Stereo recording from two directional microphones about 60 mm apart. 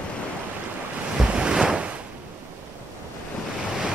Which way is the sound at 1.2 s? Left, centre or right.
Centre.